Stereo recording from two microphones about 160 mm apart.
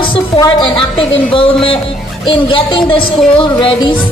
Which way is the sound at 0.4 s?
30° left (ahead or behind).